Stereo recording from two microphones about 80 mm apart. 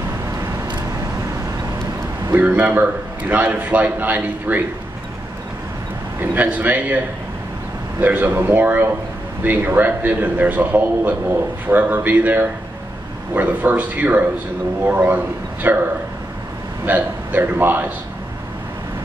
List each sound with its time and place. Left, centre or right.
2.3 s a man's voice: centre
6.3 s a man's voice: centre
8.0 s a man's voice: right
16.8 s a man's voice: right